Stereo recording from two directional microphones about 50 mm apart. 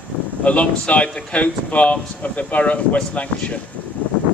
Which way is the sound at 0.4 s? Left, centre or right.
Left.